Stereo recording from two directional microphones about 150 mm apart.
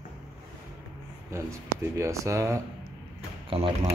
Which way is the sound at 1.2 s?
20° right (ahead or behind).